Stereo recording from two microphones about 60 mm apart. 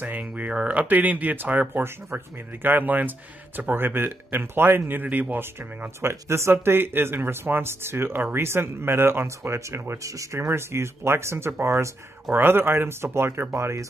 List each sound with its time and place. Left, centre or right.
0.0 s speech: right
5.9 s speech: right
6.5 s speech: right
12.3 s speech: right